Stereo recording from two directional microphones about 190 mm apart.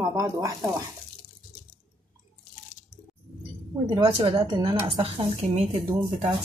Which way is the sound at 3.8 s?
25° right (ahead or behind).